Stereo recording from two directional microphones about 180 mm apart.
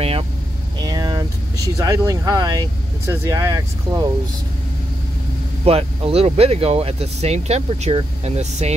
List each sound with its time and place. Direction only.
0.7 s vehicle: 20° right (ahead or behind)
1.8 s speech: 15° right (ahead or behind)
5.7 s speech: 35° right (ahead or behind)